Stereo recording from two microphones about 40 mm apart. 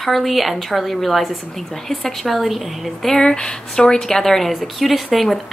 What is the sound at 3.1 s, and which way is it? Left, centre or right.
Speech, centre.